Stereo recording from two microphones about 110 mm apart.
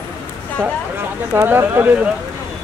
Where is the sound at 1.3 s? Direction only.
20° right (ahead or behind).